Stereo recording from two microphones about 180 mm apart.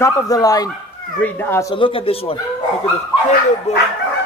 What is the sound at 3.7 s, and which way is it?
Speech, 40° left (ahead or behind).